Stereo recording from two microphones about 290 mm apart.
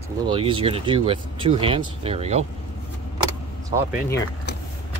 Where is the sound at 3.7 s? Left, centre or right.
Centre.